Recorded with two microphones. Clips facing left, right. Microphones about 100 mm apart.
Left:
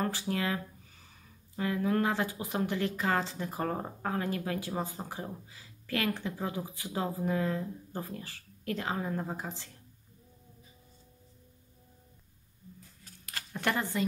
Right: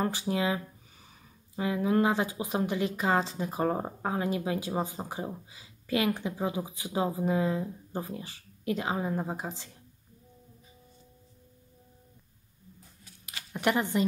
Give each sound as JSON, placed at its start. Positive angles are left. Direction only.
{"t": 0.0, "sound": "a sound", "side_deg": -20}
{"t": 1.6, "sound": "speech", "side_deg": -20}
{"t": 13.5, "sound": "speech", "side_deg": -15}